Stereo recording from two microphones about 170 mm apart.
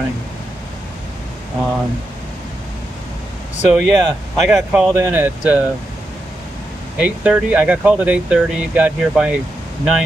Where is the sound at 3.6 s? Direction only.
5° right (ahead or behind).